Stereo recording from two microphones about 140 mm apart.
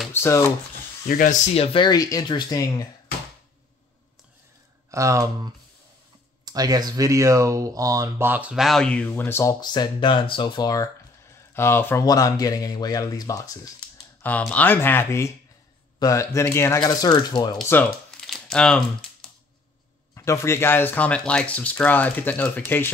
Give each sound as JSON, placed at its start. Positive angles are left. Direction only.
{"t": 0.1, "sound": "speech", "side_deg": 20}
{"t": 1.0, "sound": "speech", "side_deg": 70}
{"t": 1.5, "sound": "speech", "side_deg": 45}
{"t": 4.9, "sound": "speech", "side_deg": -20}
{"t": 11.5, "sound": "speech", "side_deg": 15}
{"t": 14.5, "sound": "speech", "side_deg": 15}
{"t": 16.8, "sound": "speech", "side_deg": 30}
{"t": 18.2, "sound": "crumpling", "side_deg": 5}
{"t": 20.2, "sound": "speech", "side_deg": 20}